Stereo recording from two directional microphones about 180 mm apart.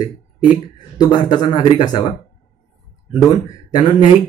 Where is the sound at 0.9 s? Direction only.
20° left (ahead or behind).